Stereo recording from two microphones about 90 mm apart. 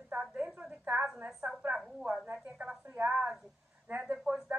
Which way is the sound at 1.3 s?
5° right (ahead or behind).